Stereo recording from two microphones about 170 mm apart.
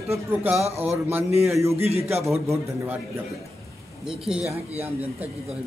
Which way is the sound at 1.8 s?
35° right (ahead or behind).